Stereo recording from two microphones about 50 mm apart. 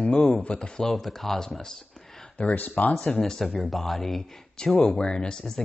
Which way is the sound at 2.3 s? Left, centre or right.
Left.